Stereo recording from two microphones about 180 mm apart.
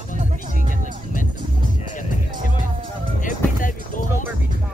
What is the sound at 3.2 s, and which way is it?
Music, 45° left (ahead or behind).